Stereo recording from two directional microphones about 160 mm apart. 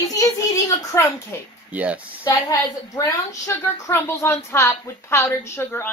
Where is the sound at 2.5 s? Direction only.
20° left (ahead or behind).